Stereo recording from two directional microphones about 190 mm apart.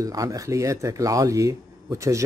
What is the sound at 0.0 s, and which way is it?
Speech, 20° right (ahead or behind).